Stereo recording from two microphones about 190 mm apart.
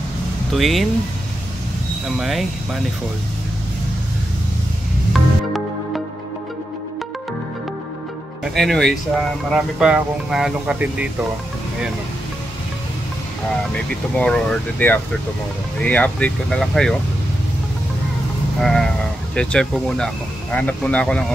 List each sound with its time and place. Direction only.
0.5 s speech: centre (ahead or behind)
2.0 s speech: centre (ahead or behind)
5.1 s music: centre (ahead or behind)
8.5 s speech: centre (ahead or behind)
14.1 s speech: 5° left (ahead or behind)
18.6 s sheep: centre (ahead or behind)
19.3 s speech: 5° left (ahead or behind)